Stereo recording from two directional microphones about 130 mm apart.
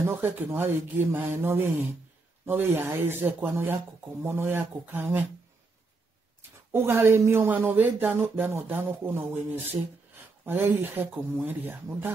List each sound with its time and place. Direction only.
0.0 s speech: 15° right (ahead or behind)
6.7 s speech: 20° right (ahead or behind)